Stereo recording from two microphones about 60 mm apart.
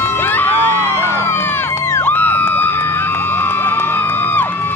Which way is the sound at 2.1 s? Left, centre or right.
Left.